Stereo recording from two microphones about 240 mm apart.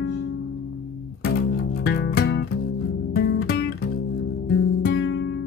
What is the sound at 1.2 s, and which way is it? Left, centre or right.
Music, left.